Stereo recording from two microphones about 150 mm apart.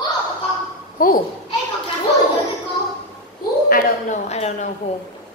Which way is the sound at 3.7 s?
50° left (ahead or behind).